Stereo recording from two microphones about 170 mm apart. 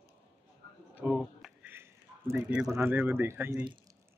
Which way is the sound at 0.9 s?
5° right (ahead or behind).